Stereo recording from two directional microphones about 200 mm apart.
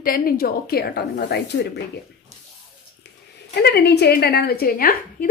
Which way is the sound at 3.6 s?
55° left (ahead or behind).